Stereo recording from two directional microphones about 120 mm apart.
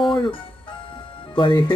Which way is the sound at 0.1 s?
45° left (ahead or behind).